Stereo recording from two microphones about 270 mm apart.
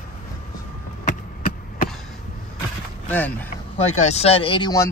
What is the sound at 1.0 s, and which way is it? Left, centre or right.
Chop, left.